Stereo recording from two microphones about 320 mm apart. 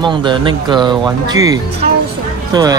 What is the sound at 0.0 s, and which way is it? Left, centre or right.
Speech, centre.